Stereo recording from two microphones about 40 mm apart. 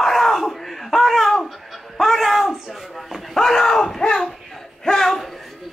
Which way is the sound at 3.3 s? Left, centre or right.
Centre.